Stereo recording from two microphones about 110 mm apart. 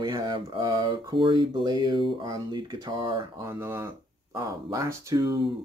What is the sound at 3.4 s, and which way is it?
Speech, 20° right (ahead or behind).